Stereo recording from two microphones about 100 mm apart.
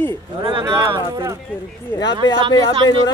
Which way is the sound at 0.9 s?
40° right (ahead or behind).